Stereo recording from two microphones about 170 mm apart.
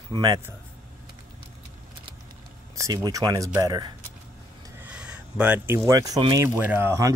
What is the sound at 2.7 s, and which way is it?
Speech, 20° right (ahead or behind).